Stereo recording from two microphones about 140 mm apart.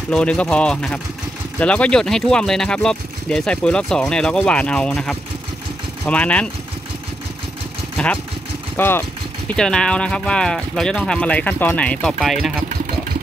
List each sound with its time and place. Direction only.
0.1 s speech: 5° left (ahead or behind)
8.7 s speech: 15° left (ahead or behind); by 12.6 s centre (ahead or behind)